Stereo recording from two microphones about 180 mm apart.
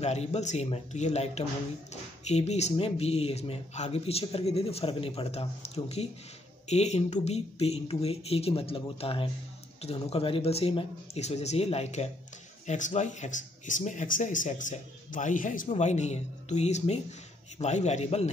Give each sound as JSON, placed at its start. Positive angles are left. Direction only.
{"t": 0.0, "sound": "speech", "side_deg": 35}